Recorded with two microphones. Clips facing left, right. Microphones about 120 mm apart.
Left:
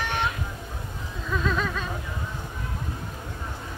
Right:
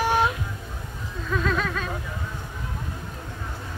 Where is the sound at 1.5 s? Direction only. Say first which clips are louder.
Even; centre (ahead or behind).